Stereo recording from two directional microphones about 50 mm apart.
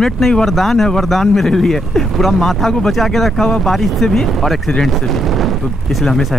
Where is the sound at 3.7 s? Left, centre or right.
Centre.